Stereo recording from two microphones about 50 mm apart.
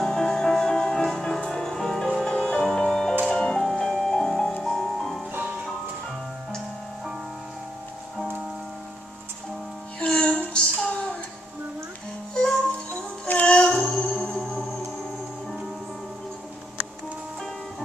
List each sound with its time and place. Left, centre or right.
0.0 s music: centre
1.0 s music: centre
2.2 s music: centre
3.6 s music: centre
9.9 s music: left
12.4 s music: centre
13.6 s music: centre